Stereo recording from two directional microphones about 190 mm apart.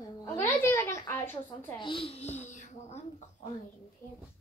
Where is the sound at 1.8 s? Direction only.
30° left (ahead or behind).